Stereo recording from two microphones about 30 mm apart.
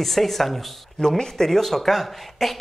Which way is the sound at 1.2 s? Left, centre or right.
Centre.